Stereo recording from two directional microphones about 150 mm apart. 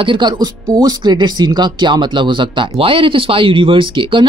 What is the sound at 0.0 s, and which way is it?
Speech, 30° right (ahead or behind).